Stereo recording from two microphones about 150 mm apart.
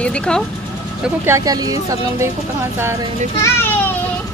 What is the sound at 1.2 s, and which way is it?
Speech, 20° right (ahead or behind).